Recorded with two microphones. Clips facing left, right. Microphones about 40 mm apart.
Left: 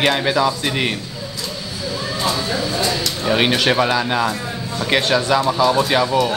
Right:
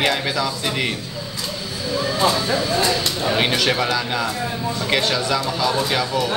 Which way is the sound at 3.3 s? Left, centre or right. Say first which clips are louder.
Left 4 dB; centre.